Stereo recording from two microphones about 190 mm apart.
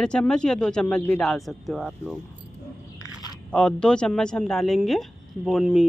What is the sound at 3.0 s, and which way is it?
Biting, 20° left (ahead or behind).